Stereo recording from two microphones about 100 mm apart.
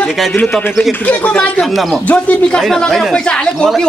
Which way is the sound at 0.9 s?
15° left (ahead or behind).